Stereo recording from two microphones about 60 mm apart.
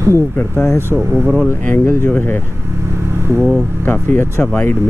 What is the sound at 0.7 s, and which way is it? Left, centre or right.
Speech, right.